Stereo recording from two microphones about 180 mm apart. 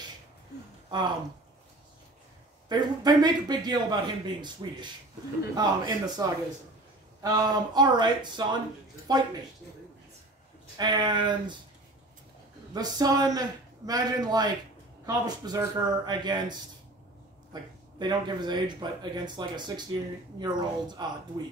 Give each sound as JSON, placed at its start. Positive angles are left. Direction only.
{"t": 0.8, "sound": "speech", "side_deg": -25}
{"t": 2.7, "sound": "speech", "side_deg": -25}
{"t": 7.2, "sound": "speech", "side_deg": -20}
{"t": 10.8, "sound": "speech", "side_deg": -25}
{"t": 12.7, "sound": "speech", "side_deg": -20}